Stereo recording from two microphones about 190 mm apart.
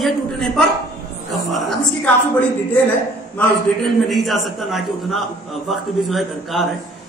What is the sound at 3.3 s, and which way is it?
A man's voice, centre (ahead or behind).